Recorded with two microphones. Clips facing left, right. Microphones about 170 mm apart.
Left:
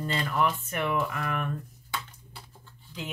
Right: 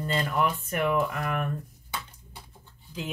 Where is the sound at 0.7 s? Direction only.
45° right (ahead or behind).